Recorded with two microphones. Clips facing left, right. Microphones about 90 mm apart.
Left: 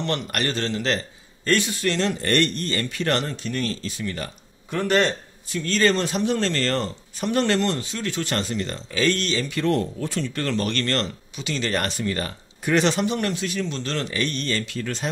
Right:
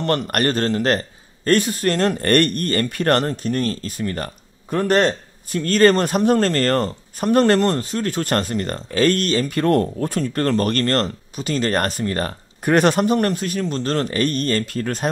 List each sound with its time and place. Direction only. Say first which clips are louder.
0.0 s a man's voice: right 6 dB; 45° right (ahead or behind)